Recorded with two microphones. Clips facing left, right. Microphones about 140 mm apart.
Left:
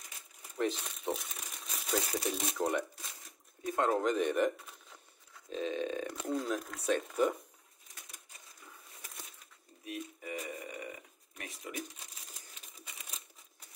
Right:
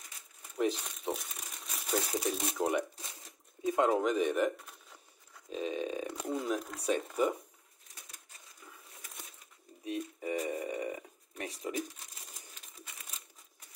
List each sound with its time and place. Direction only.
0.6 s speech: 5° right (ahead or behind)
1.9 s burping: 10° right (ahead or behind)
2.2 s speech: centre (ahead or behind)
2.5 s burping: 10° right (ahead or behind)
3.6 s speech: 15° right (ahead or behind)
5.5 s burping: 10° right (ahead or behind)
9.8 s a sound: 30° right (ahead or behind)